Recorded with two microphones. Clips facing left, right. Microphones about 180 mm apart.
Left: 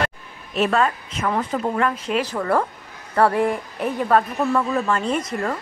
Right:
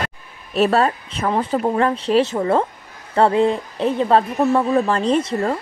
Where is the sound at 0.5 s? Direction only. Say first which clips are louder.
Right 3 dB; 35° right (ahead or behind).